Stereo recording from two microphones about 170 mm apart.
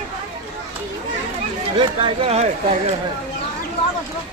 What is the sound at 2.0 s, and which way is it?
Speech, 35° right (ahead or behind).